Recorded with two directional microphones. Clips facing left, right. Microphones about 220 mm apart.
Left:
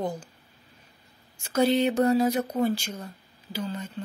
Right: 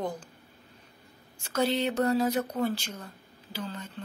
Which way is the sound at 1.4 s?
10° left (ahead or behind).